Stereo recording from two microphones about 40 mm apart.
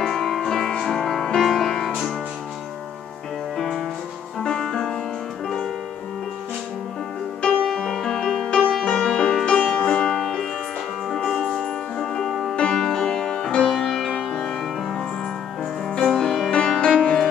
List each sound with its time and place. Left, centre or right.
0.0 s music: centre
3.5 s music: centre
7.6 s music: centre
8.5 s music: left
16.4 s music: left